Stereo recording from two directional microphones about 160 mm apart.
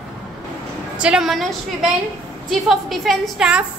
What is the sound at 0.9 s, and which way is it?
A woman's voice, 5° right (ahead or behind).